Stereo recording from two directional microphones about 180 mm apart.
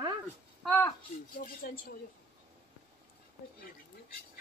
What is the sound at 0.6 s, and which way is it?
Speech, 10° left (ahead or behind).